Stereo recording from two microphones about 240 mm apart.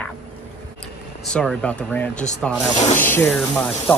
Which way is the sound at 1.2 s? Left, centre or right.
Centre.